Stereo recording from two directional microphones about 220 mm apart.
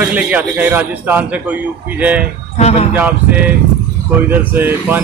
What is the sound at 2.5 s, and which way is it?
Speech, 30° left (ahead or behind).